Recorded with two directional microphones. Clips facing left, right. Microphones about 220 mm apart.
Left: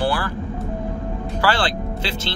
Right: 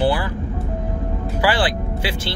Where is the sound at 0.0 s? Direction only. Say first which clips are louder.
Right 3 dB; 20° right (ahead or behind).